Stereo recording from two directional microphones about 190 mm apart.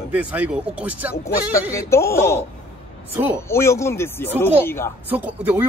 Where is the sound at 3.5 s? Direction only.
15° left (ahead or behind).